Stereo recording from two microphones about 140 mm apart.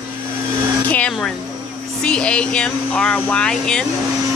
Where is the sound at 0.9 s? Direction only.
10° left (ahead or behind).